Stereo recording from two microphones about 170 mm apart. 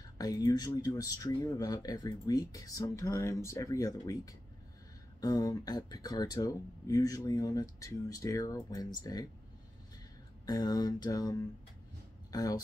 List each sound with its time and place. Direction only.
0.2 s speech: 20° left (ahead or behind)
10.4 s speech: 25° left (ahead or behind)